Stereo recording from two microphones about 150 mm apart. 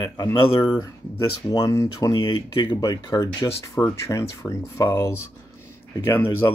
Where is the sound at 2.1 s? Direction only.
35° left (ahead or behind); by 5.1 s 20° left (ahead or behind).